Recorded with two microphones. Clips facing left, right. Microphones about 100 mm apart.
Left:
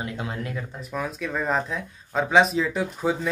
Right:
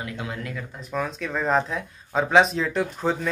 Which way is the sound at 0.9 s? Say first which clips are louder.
Right 1 dB; 5° left (ahead or behind).